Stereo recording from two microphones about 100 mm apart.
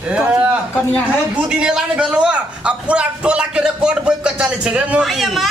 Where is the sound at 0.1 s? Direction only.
10° right (ahead or behind).